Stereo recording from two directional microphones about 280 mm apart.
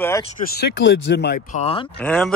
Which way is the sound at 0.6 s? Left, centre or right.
Left.